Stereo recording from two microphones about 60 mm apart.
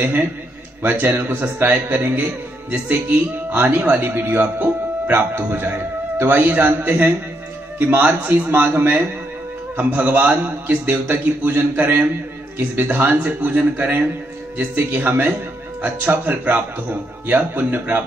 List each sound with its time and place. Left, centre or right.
0.0 s a man's voice: right